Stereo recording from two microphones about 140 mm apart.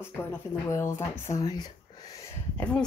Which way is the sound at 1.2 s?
25° left (ahead or behind).